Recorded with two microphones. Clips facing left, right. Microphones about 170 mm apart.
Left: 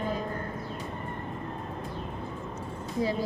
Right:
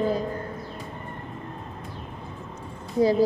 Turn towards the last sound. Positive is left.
turn(degrees=-35)  # may be behind; listen again after turning